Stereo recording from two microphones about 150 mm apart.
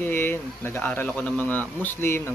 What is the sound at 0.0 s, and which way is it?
Speech, 15° left (ahead or behind).